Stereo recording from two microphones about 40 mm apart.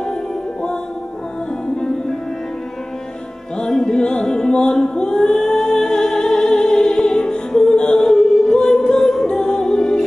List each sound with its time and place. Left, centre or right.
3.7 s music: centre